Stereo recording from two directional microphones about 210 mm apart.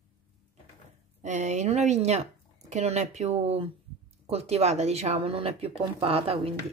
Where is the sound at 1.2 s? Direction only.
35° right (ahead or behind).